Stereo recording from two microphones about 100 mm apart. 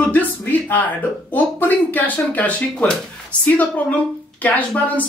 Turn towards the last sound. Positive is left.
turn(degrees=15)  # may be behind; listen again after turning